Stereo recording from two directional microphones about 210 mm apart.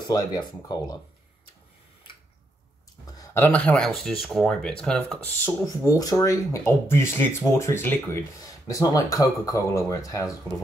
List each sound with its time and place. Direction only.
0.0 s speech: 20° left (ahead or behind)
3.1 s speech: 15° left (ahead or behind)